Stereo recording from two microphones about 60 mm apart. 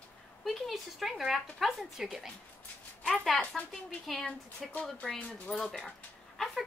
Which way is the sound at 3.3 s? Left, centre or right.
Centre.